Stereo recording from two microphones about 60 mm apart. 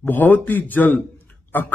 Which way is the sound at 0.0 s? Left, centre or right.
Left.